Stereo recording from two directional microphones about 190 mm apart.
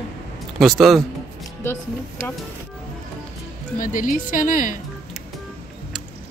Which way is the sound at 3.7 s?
45° left (ahead or behind).